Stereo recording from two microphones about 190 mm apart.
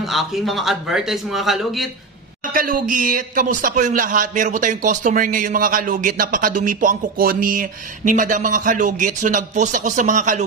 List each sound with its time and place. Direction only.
0.0 s a man's voice: centre (ahead or behind)
2.5 s a man's voice: 45° right (ahead or behind)